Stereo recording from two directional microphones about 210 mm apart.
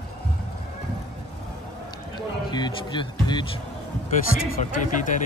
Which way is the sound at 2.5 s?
20° left (ahead or behind).